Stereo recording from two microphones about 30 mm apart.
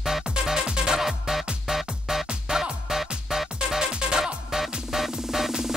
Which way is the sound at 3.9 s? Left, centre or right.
Right.